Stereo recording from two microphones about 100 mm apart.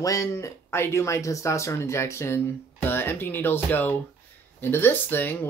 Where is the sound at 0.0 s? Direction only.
35° left (ahead or behind).